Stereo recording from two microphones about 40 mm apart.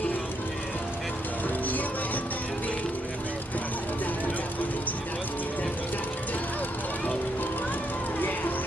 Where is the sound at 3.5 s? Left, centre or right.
Left.